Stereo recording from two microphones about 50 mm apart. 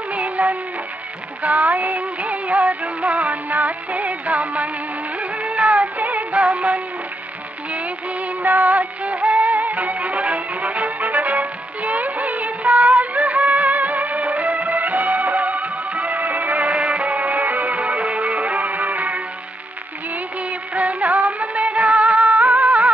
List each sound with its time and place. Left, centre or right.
0.1 s music: right
5.4 s music of bollywood: right
8.4 s music of bollywood: right
20.7 s music: right